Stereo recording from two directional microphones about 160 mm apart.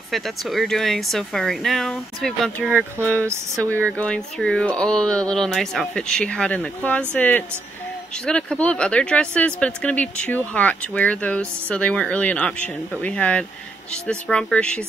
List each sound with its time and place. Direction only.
0.1 s speech: centre (ahead or behind)
3.3 s speech: 20° right (ahead or behind)
3.7 s speech: 10° left (ahead or behind)